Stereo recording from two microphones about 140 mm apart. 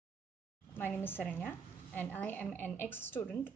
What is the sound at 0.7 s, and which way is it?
A woman's voice, 15° left (ahead or behind).